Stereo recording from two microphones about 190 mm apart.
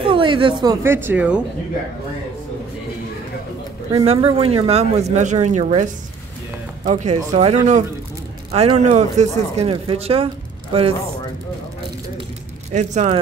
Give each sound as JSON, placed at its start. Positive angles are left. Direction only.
{"t": 0.0, "sound": "a sound", "side_deg": -25}
{"t": 0.8, "sound": "speech", "side_deg": -10}
{"t": 3.9, "sound": "speech", "side_deg": -30}
{"t": 12.7, "sound": "speech", "side_deg": -40}